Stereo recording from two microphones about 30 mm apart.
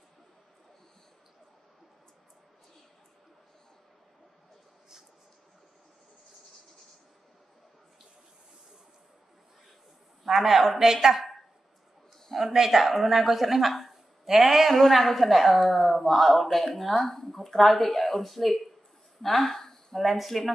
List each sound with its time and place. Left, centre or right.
10.2 s a man's voice: centre
12.5 s a woman's voice: centre
14.7 s a woman's voice: centre